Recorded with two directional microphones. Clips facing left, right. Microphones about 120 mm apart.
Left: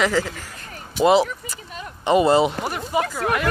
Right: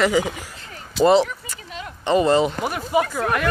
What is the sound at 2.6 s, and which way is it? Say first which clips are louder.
Speech: right 2 dB; centre (ahead or behind).